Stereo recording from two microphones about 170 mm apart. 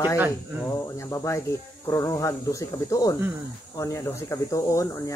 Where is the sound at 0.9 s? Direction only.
15° left (ahead or behind).